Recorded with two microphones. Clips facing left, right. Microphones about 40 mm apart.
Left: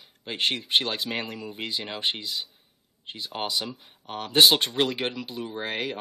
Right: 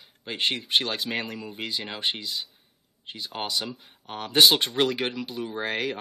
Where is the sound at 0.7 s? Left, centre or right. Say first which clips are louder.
Even; centre.